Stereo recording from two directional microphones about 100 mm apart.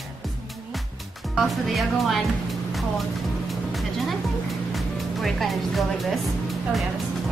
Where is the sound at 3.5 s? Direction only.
Centre (ahead or behind).